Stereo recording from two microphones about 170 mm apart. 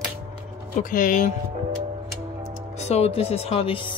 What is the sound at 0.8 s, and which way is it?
Speech, 50° left (ahead or behind).